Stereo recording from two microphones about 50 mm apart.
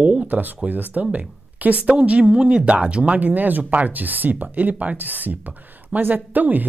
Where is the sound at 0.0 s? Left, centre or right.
Right.